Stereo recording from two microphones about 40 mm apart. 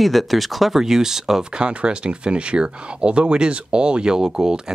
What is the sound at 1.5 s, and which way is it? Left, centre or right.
Speech, right.